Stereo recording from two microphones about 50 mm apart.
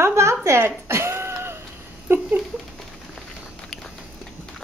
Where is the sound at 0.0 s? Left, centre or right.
Right.